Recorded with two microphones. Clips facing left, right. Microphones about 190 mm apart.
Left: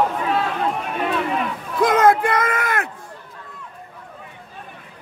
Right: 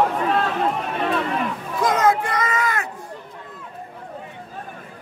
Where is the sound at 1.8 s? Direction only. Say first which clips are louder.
Left 4 dB; 55° left (ahead or behind).